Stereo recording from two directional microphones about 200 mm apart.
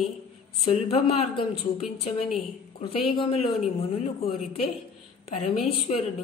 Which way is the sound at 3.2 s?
30° left (ahead or behind).